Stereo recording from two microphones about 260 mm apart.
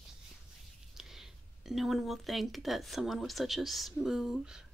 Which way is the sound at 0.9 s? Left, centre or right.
Centre.